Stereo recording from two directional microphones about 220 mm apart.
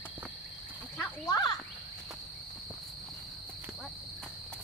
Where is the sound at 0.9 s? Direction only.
15° left (ahead or behind).